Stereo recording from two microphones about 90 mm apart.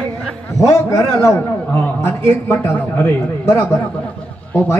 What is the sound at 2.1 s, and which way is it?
A man's voice, 25° left (ahead or behind).